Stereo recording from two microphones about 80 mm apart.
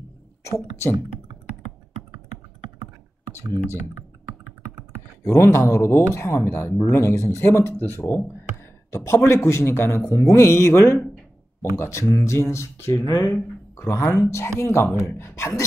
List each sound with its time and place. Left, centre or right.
5.2 s speech: left
13.3 s speech: left